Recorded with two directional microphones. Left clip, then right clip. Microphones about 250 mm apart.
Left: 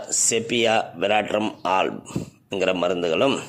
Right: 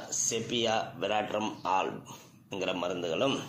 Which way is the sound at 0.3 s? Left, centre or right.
Left.